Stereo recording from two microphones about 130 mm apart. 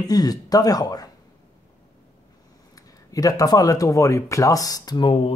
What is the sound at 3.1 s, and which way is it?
Speech, 25° left (ahead or behind).